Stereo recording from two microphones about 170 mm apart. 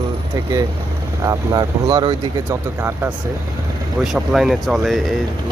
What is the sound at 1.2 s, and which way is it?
Speech, 25° right (ahead or behind).